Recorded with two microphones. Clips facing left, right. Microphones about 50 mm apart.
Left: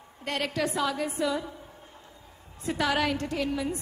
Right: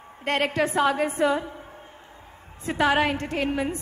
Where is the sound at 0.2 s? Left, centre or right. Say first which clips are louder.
Right 6 dB; right.